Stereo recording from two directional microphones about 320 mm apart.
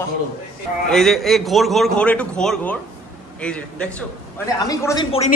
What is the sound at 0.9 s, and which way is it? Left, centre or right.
A man's voice, centre.